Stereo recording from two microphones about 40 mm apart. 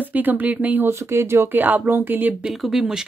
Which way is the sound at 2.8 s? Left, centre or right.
Centre.